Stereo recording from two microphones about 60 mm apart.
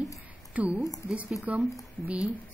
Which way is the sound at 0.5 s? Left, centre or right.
Right.